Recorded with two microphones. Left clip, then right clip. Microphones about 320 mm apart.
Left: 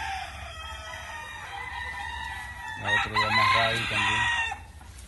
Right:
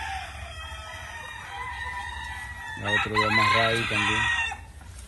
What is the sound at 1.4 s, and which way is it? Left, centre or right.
Chicken, left.